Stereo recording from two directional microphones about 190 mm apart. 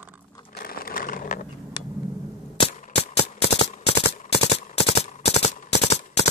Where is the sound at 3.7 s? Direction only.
30° left (ahead or behind).